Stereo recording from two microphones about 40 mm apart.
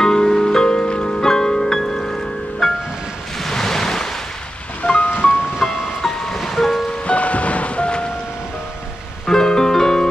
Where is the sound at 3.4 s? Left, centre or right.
Centre.